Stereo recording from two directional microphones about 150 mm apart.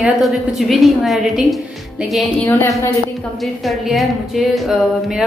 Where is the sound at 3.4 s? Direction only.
Centre (ahead or behind).